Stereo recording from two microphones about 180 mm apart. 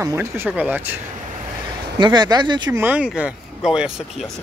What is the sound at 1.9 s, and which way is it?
Speech, 25° right (ahead or behind).